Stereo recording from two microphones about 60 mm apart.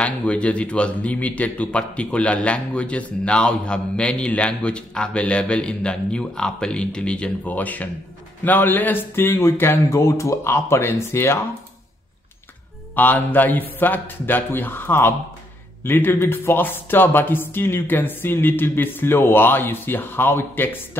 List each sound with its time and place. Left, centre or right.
0.0 s a man's voice: centre
7.4 s a man's voice: left
12.9 s speech: left